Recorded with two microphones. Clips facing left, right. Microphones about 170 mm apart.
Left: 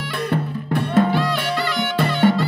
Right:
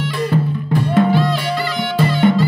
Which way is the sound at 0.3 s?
60° left (ahead or behind).